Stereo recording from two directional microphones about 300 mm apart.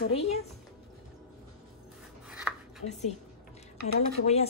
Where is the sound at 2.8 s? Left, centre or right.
Left.